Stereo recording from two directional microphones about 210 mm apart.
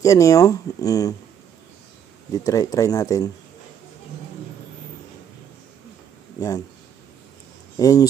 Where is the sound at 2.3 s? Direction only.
15° left (ahead or behind).